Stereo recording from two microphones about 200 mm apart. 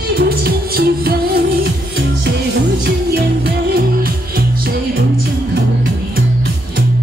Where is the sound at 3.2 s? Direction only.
55° right (ahead or behind).